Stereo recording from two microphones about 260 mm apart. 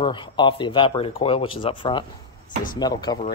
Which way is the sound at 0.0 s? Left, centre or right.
Centre.